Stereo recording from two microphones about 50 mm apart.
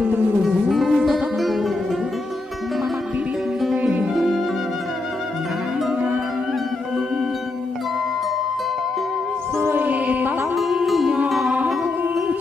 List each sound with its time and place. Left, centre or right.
0.7 s music: centre
4.1 s music: centre
9.6 s music: right
9.8 s music: right
10.5 s music: centre
11.5 s music: right